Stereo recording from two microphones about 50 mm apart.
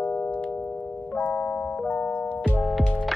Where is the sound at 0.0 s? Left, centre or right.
Left.